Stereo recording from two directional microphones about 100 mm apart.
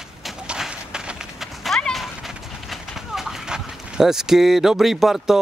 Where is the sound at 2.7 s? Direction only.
5° right (ahead or behind).